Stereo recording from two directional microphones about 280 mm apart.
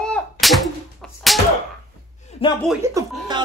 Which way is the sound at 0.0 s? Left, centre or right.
Centre.